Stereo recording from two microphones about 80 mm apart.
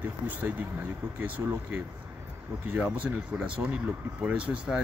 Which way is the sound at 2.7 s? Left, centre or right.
Right.